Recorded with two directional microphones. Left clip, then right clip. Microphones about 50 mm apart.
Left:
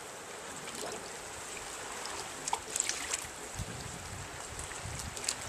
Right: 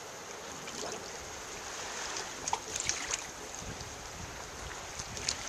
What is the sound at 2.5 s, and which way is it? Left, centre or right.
Boat, centre.